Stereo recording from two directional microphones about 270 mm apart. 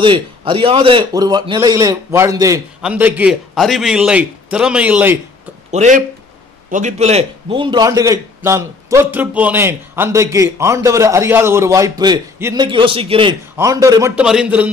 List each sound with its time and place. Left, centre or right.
0.0 s a man's voice: centre
5.7 s a man's voice: right; by 14.7 s centre